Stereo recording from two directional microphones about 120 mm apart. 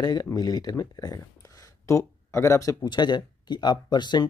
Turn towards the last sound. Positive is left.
turn(degrees=35)  # may be behind; listen again after turning